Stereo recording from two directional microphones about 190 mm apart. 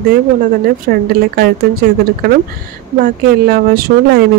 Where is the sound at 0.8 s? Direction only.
55° right (ahead or behind).